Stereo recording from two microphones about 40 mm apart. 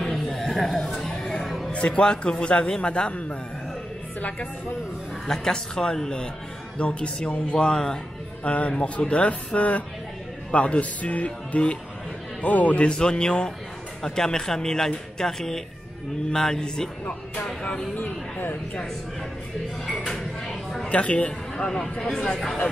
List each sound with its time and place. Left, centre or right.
0.0 s a sound: centre
1.7 s speech: left
5.2 s speech: centre
8.5 s speech: left
12.8 s speech: left
17.9 s speech: left
20.1 s a sound: centre
20.9 s speech: left
21.5 s speech: centre